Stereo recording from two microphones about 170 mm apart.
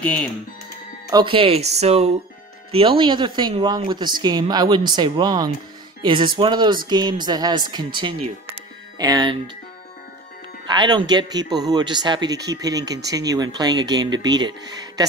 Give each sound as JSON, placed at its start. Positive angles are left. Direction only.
{"t": 0.0, "sound": "speech", "side_deg": 10}
{"t": 1.1, "sound": "speech", "side_deg": -30}
{"t": 10.7, "sound": "speech", "side_deg": -25}